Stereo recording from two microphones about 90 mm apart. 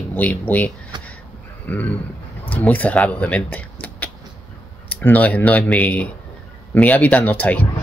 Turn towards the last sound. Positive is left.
turn(degrees=20)  # may be behind; listen again after turning